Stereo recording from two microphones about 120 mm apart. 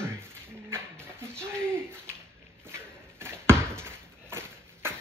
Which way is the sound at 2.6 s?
20° right (ahead or behind).